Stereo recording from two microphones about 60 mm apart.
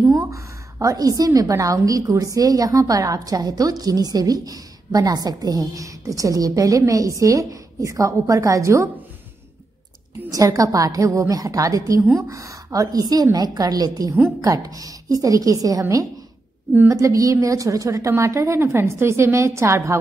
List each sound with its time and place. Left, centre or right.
0.3 s a woman's voice: right
10.3 s a woman's voice: right
16.9 s a woman's voice: right